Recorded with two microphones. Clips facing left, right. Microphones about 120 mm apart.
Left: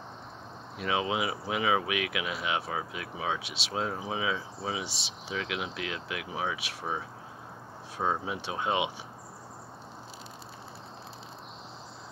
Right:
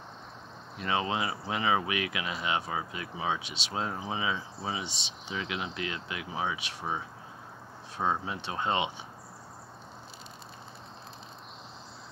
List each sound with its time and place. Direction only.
0.7 s speech: 5° left (ahead or behind)
8.0 s speech: 5° left (ahead or behind)